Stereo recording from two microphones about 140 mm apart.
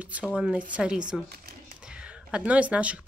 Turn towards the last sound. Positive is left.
turn(degrees=-10)  # may be behind; listen again after turning